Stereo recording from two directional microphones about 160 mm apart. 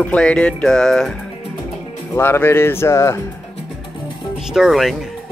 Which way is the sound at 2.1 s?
15° left (ahead or behind).